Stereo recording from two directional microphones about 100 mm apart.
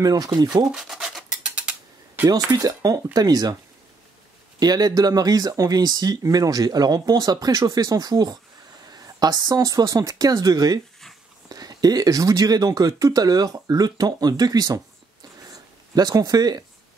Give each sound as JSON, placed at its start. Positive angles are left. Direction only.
{"t": 0.0, "sound": "speech", "side_deg": -40}
{"t": 0.7, "sound": "rub", "side_deg": -5}
{"t": 2.5, "sound": "speech", "side_deg": -40}
{"t": 4.6, "sound": "speech", "side_deg": -40}
{"t": 15.5, "sound": "a sound", "side_deg": -40}